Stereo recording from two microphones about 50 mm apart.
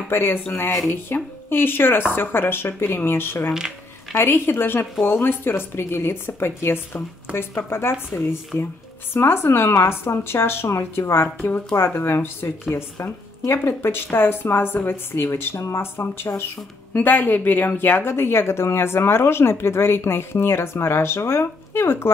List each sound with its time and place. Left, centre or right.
0.1 s speech: left
11.3 s speech: left
14.0 s speech: left
16.9 s speech: left